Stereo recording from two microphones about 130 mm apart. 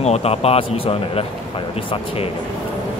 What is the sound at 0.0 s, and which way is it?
Speech, 55° left (ahead or behind).